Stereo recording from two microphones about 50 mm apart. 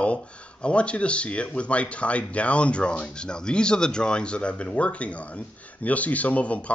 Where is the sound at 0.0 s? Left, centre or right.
Left.